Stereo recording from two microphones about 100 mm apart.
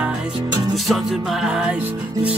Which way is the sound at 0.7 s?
Centre (ahead or behind).